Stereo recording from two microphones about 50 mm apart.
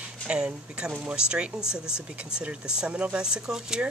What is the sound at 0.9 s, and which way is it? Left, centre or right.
Speech, right.